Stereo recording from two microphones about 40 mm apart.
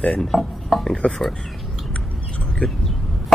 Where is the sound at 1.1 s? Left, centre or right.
Centre.